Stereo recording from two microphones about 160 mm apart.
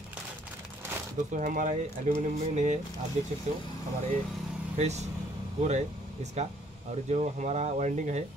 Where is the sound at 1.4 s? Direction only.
55° right (ahead or behind).